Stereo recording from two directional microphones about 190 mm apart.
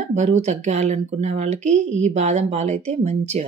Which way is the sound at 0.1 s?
40° right (ahead or behind).